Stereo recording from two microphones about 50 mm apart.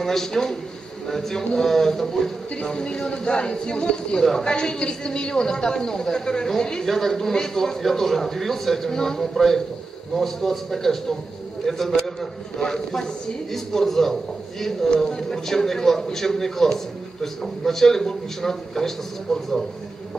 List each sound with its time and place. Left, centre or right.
0.0 s a man's voice: centre
2.6 s a man's voice: centre